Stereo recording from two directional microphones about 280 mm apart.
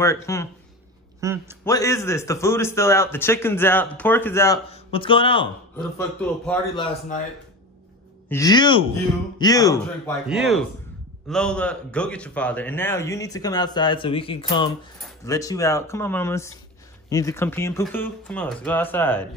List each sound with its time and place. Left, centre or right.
0.0 s a man's voice: centre
1.2 s a man's voice: centre
1.6 s a man's voice: centre
4.6 s a man's voice: left
5.8 s a man's voice: centre
8.3 s a man's voice: centre
10.2 s a man's voice: centre